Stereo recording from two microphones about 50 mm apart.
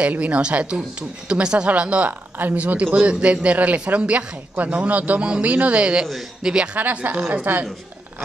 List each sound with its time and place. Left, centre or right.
0.0 s a woman's voice: right
6.8 s a woman's voice: right
7.5 s a woman's voice: right